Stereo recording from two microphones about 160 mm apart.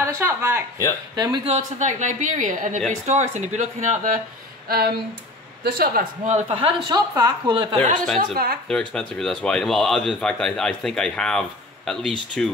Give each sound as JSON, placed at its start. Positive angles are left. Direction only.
{"t": 0.0, "sound": "speech", "side_deg": -15}
{"t": 1.1, "sound": "speech", "side_deg": -25}
{"t": 1.5, "sound": "a woman's voice", "side_deg": -50}
{"t": 4.6, "sound": "a woman's voice", "side_deg": -70}
{"t": 6.2, "sound": "speech", "side_deg": -40}
{"t": 8.2, "sound": "a woman's voice", "side_deg": -70}
{"t": 8.6, "sound": "speech", "side_deg": 5}